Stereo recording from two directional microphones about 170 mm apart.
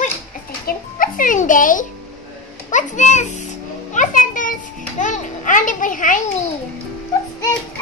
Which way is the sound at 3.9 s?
50° left (ahead or behind).